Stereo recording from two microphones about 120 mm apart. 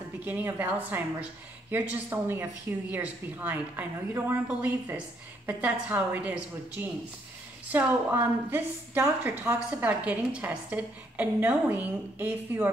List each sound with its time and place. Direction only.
0.2 s a woman's voice: 15° right (ahead or behind)